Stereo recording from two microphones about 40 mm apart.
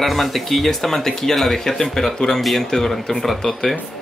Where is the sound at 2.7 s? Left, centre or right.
Centre.